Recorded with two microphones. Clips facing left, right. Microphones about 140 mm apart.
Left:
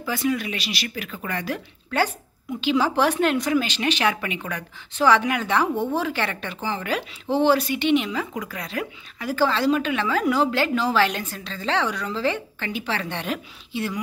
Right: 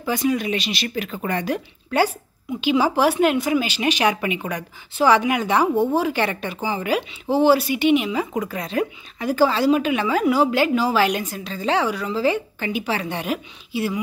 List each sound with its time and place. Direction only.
0.0 s a woman's voice: 20° right (ahead or behind)
8.4 s a woman's voice: 25° right (ahead or behind)